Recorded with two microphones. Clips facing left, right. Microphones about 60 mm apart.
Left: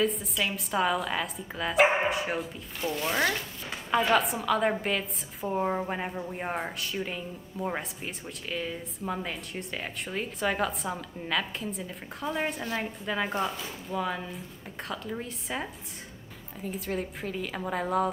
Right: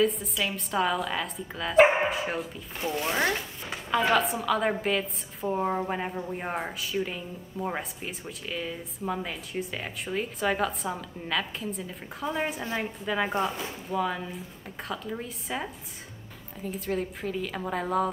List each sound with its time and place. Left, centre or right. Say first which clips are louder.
0.0 s speech: right 2 dB; centre